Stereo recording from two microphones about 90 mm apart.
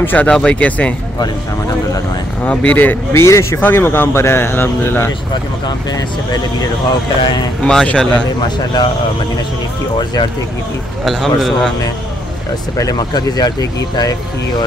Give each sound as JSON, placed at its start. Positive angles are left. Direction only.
{"t": 0.0, "sound": "speech", "side_deg": 20}
{"t": 2.4, "sound": "speech", "side_deg": 15}
{"t": 5.9, "sound": "speech", "side_deg": 50}
{"t": 7.6, "sound": "speech", "side_deg": 15}
{"t": 11.1, "sound": "a man's voice", "side_deg": 5}
{"t": 12.7, "sound": "speech", "side_deg": 45}